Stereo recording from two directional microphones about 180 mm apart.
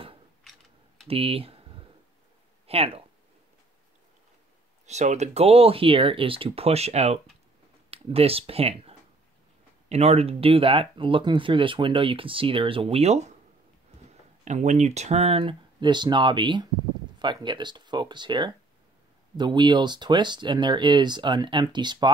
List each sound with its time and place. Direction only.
0.4 s a sound: centre (ahead or behind)
1.0 s speech: 35° right (ahead or behind)
2.6 s speech: 35° right (ahead or behind)
4.8 s speech: 40° right (ahead or behind)